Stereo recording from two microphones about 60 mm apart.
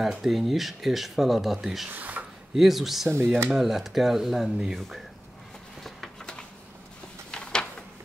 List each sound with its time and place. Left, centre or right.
0.0 s speech: centre
1.9 s speech: right
2.5 s speech: centre
6.1 s a sound: centre